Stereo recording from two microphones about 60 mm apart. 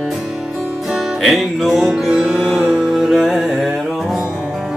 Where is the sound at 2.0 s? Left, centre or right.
Centre.